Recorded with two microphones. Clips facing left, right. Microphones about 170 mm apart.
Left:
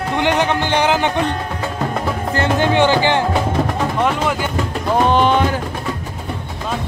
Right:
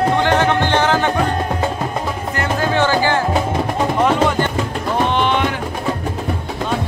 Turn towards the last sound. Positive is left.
turn(degrees=40)  # may be behind; listen again after turning